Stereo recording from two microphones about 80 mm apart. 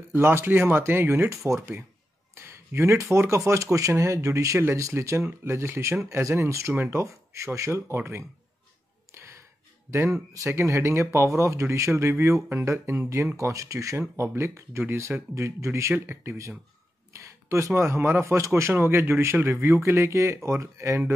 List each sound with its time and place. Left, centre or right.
0.1 s speech: right
9.1 s music: right
9.8 s speech: right